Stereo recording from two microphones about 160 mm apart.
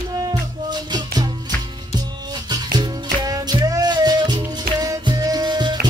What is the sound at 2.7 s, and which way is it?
Music, 25° right (ahead or behind).